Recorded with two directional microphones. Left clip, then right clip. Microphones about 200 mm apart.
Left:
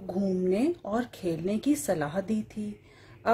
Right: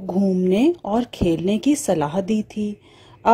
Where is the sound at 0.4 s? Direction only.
35° right (ahead or behind).